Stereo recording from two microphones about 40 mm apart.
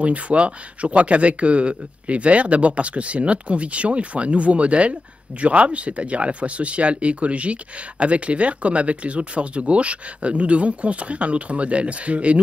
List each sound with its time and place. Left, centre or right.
0.0 s speech: right